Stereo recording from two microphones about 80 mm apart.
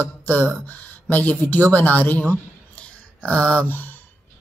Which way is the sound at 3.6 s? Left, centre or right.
Left.